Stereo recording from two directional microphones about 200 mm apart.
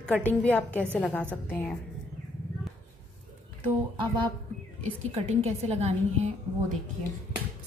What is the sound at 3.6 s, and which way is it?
A woman's voice, 25° right (ahead or behind).